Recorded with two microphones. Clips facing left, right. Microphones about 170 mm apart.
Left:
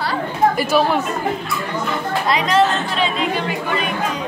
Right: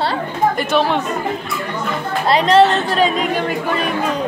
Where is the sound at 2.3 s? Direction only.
30° right (ahead or behind).